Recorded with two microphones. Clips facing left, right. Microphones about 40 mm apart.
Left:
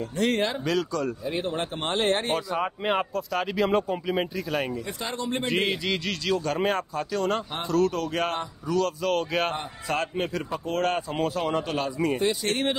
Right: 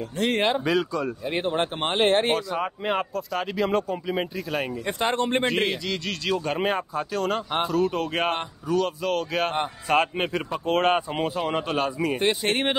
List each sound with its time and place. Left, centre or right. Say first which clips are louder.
0.3 s a man's voice: right 5 dB; right
0.7 s speech: right 2 dB; centre
1.2 s a man's voice: right 3 dB; right
2.3 s speech: right 1 dB; centre
4.8 s speech: right 7 dB; right
5.7 s speech: left 1 dB; centre
6.3 s speech: even; right
6.6 s speech: right 1 dB; centre
7.9 s a man's voice: right 2 dB; right
9.0 s speech: even; centre
9.6 s a man's voice: right 6 dB; right
11.3 s speech: right 1 dB; centre
12.2 s a man's voice: right 2 dB; right